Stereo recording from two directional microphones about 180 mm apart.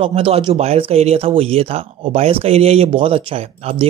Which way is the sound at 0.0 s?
30° right (ahead or behind).